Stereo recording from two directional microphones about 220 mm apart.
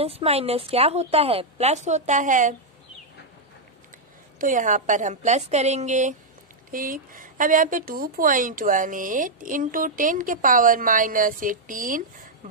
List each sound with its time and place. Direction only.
0.0 s a woman's voice: 25° right (ahead or behind)
4.4 s speech: 35° right (ahead or behind)